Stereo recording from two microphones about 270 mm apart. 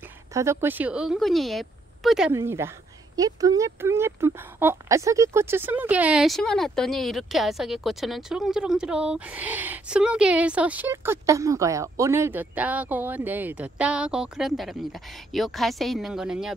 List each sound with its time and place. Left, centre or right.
0.3 s speech: centre